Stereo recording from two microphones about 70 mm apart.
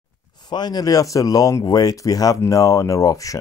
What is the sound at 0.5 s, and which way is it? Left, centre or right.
Speech, left.